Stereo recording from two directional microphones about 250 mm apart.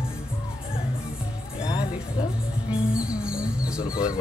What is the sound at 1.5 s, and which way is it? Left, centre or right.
Music, centre.